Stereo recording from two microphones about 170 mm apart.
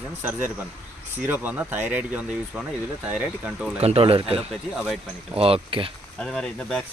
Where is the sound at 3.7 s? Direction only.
35° right (ahead or behind).